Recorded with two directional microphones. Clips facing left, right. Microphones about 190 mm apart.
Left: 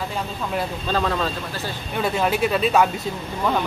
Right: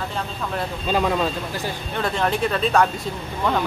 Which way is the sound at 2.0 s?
10° left (ahead or behind).